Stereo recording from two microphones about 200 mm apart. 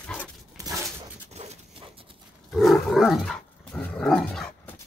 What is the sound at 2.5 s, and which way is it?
Dog, centre (ahead or behind).